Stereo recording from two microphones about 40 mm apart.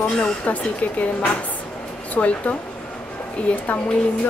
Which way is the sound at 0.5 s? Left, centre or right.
Left.